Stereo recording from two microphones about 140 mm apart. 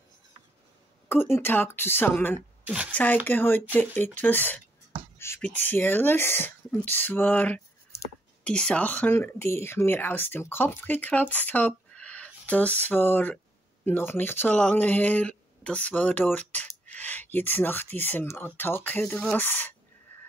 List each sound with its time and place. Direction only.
1.0 s speech: 15° left (ahead or behind)
2.6 s speech: 10° right (ahead or behind)
2.9 s speech: 10° left (ahead or behind)
5.1 s beatboxing: 20° left (ahead or behind)
5.4 s speech: 15° left (ahead or behind)